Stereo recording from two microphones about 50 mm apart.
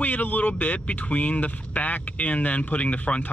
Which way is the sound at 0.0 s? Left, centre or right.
Left.